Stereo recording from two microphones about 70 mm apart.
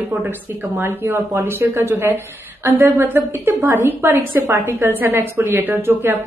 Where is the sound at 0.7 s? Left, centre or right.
Right.